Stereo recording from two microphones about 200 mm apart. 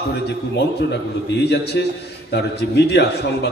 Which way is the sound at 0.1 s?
60° left (ahead or behind).